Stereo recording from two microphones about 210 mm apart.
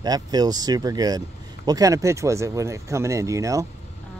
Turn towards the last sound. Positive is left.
turn(degrees=-15)  # may be behind; listen again after turning